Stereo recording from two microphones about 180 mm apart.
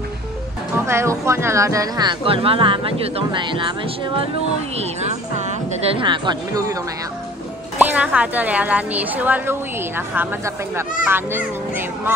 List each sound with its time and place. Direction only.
0.8 s speech: 15° right (ahead or behind)
4.7 s a woman's voice: 40° right (ahead or behind)
6.0 s speech: 25° right (ahead or behind)
7.8 s a woman's voice: 10° right (ahead or behind)